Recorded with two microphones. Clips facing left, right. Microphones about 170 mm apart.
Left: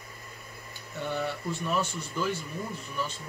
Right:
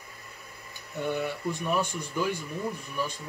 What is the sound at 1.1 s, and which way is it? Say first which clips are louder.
A man's voice: left 1 dB; 15° right (ahead or behind).